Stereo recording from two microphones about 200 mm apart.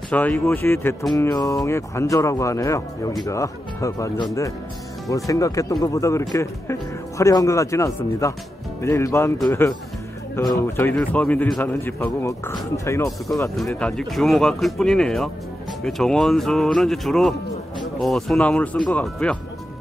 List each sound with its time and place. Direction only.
0.1 s speech: 10° left (ahead or behind)
13.6 s speech: 5° left (ahead or behind)